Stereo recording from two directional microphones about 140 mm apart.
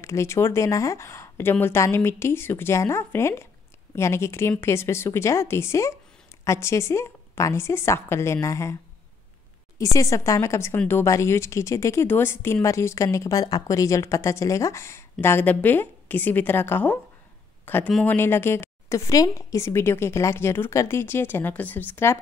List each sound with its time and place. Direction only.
0.0 s speech: 20° left (ahead or behind)
9.9 s a woman's voice: 20° left (ahead or behind)